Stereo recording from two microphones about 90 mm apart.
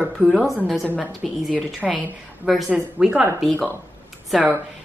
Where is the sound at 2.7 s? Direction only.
15° right (ahead or behind).